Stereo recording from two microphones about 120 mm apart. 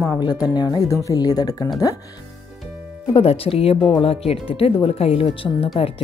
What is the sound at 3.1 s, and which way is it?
Speech, 55° left (ahead or behind).